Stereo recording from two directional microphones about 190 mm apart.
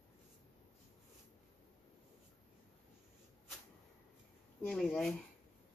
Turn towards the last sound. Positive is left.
turn(degrees=5)  # may be behind; listen again after turning